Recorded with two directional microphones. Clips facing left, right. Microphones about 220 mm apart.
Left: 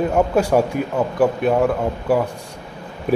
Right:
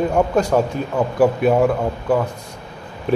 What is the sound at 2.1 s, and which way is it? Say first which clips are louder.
Speech: even; 10° left (ahead or behind).